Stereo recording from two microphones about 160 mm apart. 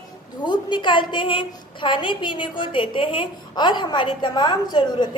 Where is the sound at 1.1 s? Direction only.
30° left (ahead or behind).